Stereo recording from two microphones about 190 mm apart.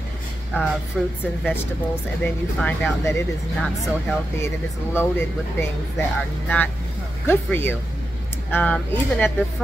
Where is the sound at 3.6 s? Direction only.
Centre (ahead or behind).